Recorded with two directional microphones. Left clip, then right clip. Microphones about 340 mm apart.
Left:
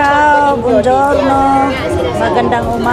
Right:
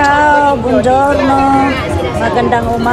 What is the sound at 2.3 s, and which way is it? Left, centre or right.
Music, centre.